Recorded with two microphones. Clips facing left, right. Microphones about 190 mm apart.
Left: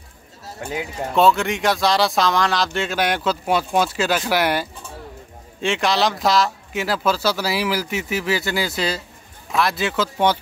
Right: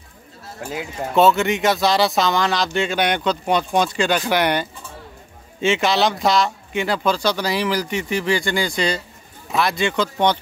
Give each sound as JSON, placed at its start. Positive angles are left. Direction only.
{"t": 0.6, "sound": "speech", "side_deg": 0}